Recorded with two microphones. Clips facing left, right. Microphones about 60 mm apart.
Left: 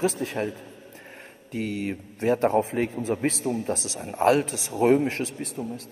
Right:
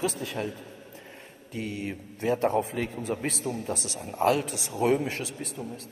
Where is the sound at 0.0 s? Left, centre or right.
Left.